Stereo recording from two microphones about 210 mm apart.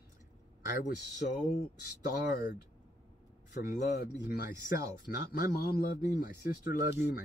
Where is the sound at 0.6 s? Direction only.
50° left (ahead or behind).